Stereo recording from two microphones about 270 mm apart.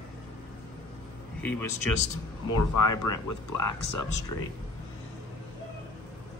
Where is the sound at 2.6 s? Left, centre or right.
Left.